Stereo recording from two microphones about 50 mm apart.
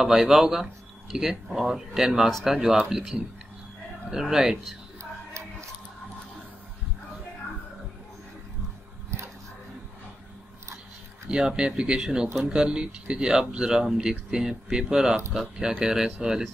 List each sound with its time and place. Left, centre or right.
0.0 s speech: centre
11.2 s speech: centre